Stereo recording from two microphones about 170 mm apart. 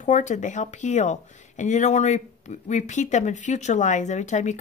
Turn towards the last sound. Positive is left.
turn(degrees=45)  # may be behind; listen again after turning